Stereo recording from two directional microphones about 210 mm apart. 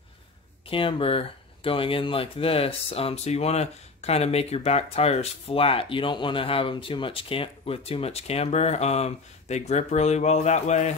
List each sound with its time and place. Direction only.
0.7 s speech: 25° left (ahead or behind)